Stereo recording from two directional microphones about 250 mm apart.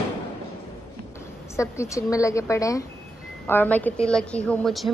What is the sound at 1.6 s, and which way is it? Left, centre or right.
A woman's voice, centre.